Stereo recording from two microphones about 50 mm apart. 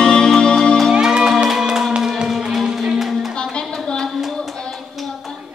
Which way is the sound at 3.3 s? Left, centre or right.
Centre.